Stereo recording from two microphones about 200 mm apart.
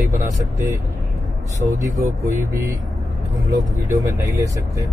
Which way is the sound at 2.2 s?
15° right (ahead or behind).